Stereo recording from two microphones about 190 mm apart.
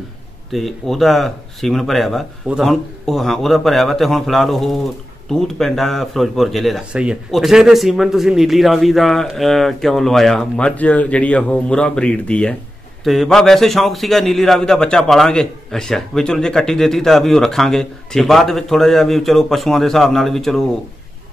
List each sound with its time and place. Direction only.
0.5 s a man's voice: centre (ahead or behind)